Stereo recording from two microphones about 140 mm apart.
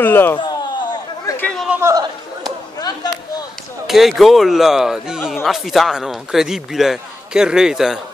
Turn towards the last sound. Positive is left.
turn(degrees=-5)  # may be behind; listen again after turning